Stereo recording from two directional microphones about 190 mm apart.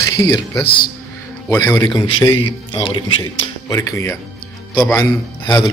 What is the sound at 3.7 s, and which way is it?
Speech, 15° left (ahead or behind).